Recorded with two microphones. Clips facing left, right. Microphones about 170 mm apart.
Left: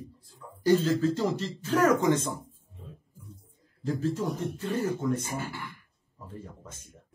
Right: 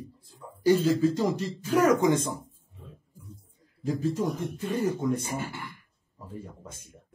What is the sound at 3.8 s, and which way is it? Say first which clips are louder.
Speech: right 2 dB; 10° right (ahead or behind).